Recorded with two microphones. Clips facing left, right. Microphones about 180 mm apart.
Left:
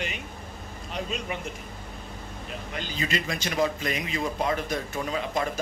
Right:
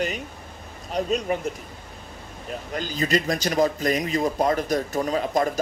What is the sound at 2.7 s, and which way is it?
Speech, 40° right (ahead or behind).